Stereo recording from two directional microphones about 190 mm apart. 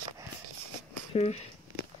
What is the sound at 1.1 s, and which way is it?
Speech, 35° left (ahead or behind).